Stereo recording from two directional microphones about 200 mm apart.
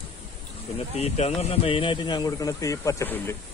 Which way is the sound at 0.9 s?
30° left (ahead or behind).